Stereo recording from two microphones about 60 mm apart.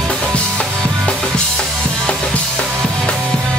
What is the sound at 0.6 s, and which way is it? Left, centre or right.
Drum kit, centre.